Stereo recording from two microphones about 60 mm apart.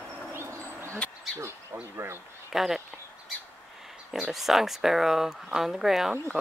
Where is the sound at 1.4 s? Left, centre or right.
Right.